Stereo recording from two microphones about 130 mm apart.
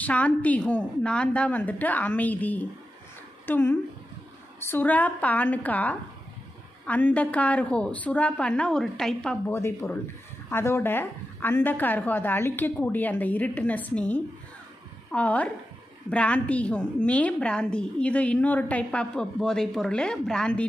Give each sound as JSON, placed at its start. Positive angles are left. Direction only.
{"t": 0.0, "sound": "a woman's voice", "side_deg": 10}
{"t": 9.5, "sound": "a woman's voice", "side_deg": 20}